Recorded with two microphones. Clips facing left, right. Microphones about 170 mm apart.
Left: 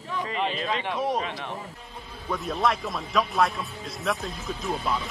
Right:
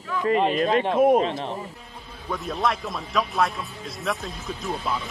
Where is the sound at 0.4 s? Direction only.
45° right (ahead or behind).